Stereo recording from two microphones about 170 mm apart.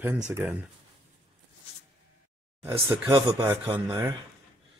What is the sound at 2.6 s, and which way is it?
Speech, 15° right (ahead or behind).